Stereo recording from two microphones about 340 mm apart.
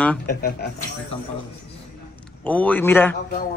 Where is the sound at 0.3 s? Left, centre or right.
Left.